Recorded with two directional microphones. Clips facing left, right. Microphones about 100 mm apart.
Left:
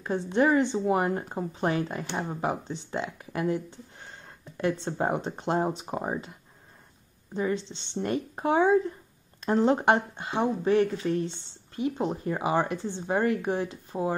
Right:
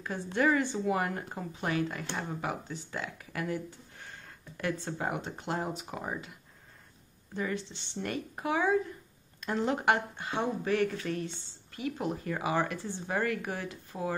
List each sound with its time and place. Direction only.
0.0 s speech: 25° left (ahead or behind)
7.3 s speech: 25° left (ahead or behind)